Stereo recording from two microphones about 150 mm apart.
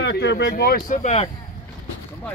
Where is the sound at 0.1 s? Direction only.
90° left; by 1.3 s 50° left (ahead or behind).